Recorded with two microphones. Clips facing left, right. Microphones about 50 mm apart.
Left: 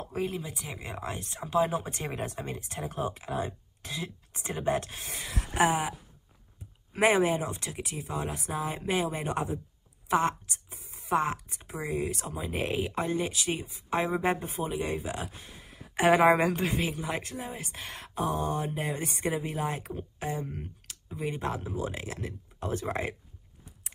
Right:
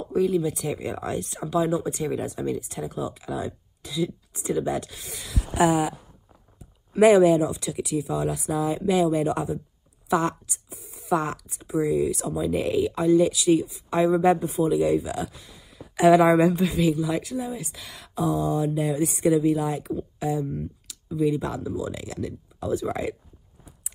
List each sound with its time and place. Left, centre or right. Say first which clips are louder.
0.0 s speech: right 10 dB; left
0.5 s speech: right 11 dB; centre; by 10.3 s left
10.5 s a sound: right 3 dB; left
11.4 s speech: right 12 dB; left
12.4 s speech: right 7 dB; left